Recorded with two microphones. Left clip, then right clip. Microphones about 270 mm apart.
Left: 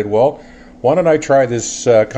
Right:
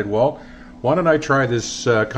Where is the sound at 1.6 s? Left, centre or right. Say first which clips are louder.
Left 3 dB; right.